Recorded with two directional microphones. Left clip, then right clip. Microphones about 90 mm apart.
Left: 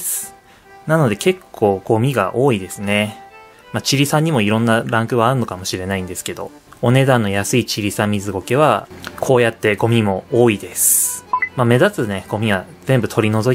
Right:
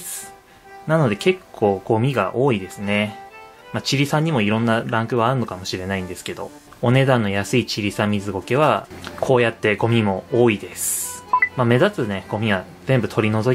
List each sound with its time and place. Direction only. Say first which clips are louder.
0.8 s speech: left 3 dB; 35° left (ahead or behind)